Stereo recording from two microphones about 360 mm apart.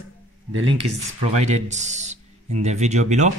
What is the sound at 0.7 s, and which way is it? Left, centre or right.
Speech, right.